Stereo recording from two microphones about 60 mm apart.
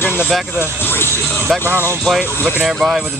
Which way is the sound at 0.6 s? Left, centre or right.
Left.